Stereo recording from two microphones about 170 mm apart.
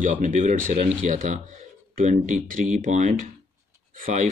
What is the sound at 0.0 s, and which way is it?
Speech, 50° right (ahead or behind).